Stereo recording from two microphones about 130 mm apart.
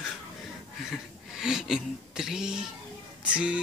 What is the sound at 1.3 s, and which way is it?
Speech, 5° right (ahead or behind).